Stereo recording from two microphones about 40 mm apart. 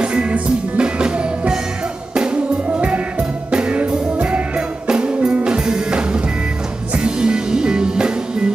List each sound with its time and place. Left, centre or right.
0.0 s music: right
2.7 s music: right